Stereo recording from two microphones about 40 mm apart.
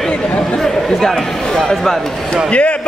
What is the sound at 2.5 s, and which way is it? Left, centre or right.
Basketball bounce, left.